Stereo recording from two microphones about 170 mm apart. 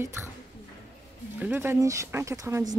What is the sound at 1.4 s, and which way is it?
Speech, 15° right (ahead or behind).